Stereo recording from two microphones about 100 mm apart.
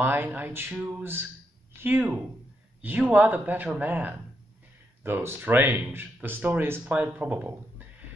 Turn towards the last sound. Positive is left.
turn(degrees=-15)  # may be behind; listen again after turning